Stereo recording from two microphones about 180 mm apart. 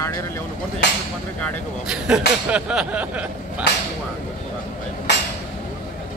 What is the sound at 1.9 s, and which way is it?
Speech, 5° right (ahead or behind).